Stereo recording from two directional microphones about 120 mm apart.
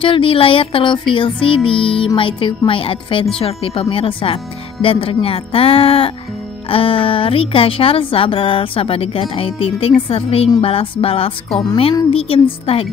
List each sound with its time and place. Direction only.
0.0 s speech: 45° left (ahead or behind)